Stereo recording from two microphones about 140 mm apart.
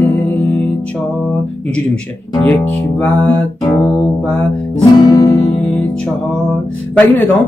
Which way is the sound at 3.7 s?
25° left (ahead or behind).